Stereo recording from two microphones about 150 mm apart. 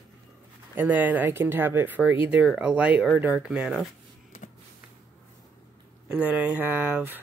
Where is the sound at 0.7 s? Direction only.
10° right (ahead or behind).